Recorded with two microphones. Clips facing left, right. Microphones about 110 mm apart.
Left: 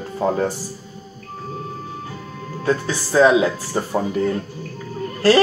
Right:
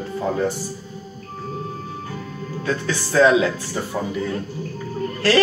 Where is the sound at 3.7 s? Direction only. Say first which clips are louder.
Left 4 dB; 35° left (ahead or behind).